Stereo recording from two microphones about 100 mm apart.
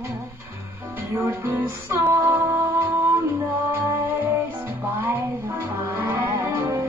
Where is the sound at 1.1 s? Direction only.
25° right (ahead or behind).